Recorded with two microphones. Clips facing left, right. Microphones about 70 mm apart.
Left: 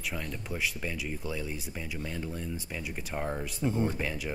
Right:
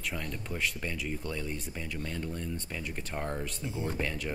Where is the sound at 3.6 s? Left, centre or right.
Left.